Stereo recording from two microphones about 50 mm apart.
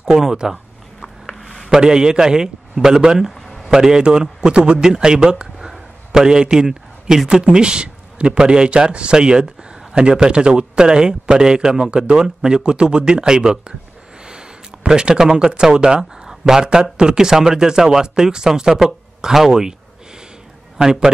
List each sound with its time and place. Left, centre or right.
0.0 s a man's voice: centre
1.0 s a sound: centre
1.7 s a man's voice: centre
3.3 s a sound: centre
3.6 s a man's voice: centre
20.7 s a man's voice: centre